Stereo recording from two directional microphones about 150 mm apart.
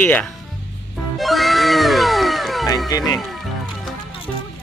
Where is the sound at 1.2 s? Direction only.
Centre (ahead or behind).